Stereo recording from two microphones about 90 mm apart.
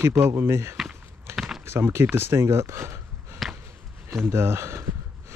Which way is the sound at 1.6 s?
25° right (ahead or behind).